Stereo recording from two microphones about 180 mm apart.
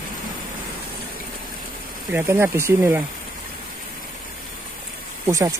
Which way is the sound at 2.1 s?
15° right (ahead or behind).